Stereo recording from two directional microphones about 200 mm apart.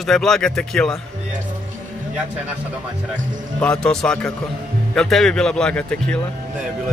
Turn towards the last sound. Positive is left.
turn(degrees=5)  # may be behind; listen again after turning